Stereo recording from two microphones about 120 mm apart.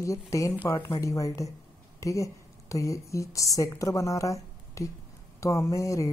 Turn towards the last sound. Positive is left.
turn(degrees=25)  # may be behind; listen again after turning